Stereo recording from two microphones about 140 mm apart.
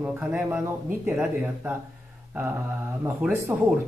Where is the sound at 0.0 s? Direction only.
10° right (ahead or behind).